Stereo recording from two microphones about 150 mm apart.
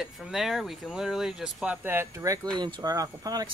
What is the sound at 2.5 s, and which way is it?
Speech, 30° right (ahead or behind).